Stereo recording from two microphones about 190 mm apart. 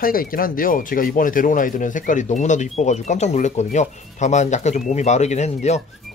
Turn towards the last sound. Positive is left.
turn(degrees=35)  # may be behind; listen again after turning